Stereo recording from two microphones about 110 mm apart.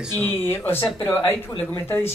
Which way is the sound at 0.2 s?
20° left (ahead or behind).